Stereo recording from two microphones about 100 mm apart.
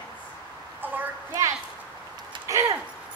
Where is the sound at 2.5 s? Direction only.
30° right (ahead or behind).